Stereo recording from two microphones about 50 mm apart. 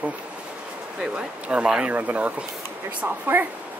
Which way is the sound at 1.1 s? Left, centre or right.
Right.